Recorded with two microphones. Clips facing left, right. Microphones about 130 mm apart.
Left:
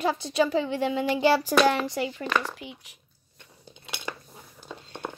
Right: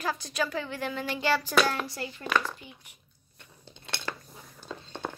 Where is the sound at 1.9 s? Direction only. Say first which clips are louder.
Left 3 dB; 90° left.